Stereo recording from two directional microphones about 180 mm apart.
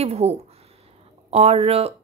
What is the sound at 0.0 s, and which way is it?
A woman's voice, 35° right (ahead or behind).